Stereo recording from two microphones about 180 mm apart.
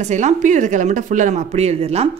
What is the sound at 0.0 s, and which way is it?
A woman's voice, 40° right (ahead or behind).